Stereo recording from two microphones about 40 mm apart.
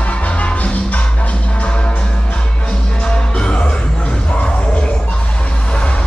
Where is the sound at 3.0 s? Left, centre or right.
Left.